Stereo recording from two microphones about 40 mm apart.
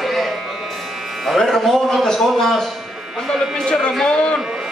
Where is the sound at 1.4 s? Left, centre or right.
Centre.